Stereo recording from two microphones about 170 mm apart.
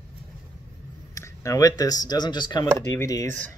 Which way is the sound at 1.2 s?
20° left (ahead or behind).